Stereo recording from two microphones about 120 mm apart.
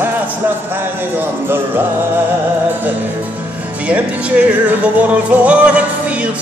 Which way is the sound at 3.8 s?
10° right (ahead or behind).